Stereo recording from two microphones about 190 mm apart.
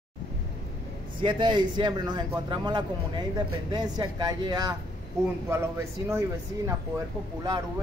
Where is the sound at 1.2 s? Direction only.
25° right (ahead or behind).